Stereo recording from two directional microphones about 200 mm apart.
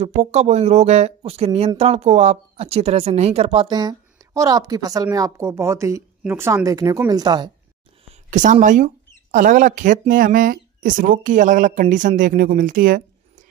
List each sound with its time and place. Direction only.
0.0 s speech: 35° right (ahead or behind)
8.3 s speech: 40° right (ahead or behind)